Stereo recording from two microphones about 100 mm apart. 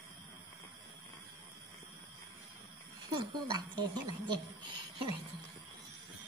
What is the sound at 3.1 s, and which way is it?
A woman's voice, 45° right (ahead or behind).